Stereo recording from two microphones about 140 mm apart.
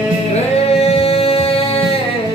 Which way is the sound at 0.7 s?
45° left (ahead or behind).